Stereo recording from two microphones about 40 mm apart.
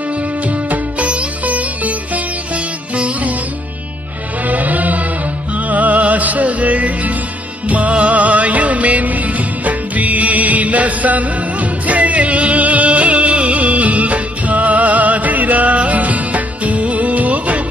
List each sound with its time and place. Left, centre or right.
0.7 s music: right
4.5 s music: right